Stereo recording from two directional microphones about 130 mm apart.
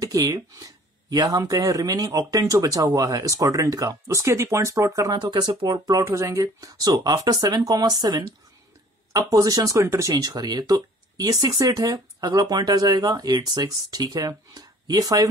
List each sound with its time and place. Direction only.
0.0 s speech: 30° right (ahead or behind)
9.3 s speech: 30° right (ahead or behind)